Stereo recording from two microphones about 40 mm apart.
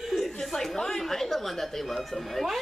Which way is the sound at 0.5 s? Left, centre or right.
Centre.